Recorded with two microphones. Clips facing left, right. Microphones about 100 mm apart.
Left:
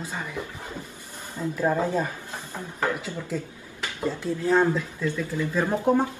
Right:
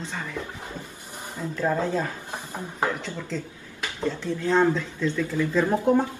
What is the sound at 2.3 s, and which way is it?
Speech, 15° right (ahead or behind).